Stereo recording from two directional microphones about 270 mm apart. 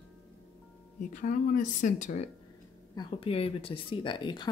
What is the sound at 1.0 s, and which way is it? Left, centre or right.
Speech, left.